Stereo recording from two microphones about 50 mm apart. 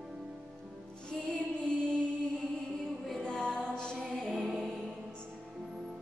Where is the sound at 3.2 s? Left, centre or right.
Centre.